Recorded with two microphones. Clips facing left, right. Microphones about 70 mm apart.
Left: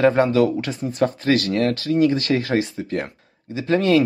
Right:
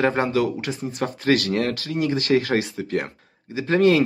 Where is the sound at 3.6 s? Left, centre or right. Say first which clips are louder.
Even; right.